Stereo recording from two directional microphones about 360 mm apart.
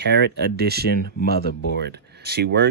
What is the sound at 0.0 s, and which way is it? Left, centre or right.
Speech, right.